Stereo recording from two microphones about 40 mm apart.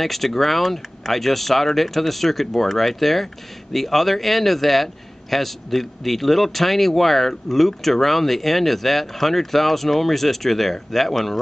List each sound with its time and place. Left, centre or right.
0.0 s a man's voice: centre